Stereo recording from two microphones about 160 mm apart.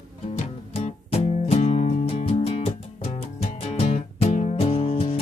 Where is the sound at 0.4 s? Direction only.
40° left (ahead or behind).